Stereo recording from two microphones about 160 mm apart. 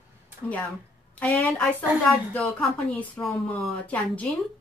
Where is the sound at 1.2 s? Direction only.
10° left (ahead or behind).